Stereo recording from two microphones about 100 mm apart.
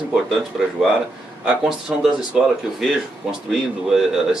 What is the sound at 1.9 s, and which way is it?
Speech, 10° right (ahead or behind).